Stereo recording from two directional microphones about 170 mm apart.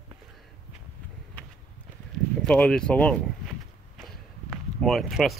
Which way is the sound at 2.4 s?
5° left (ahead or behind).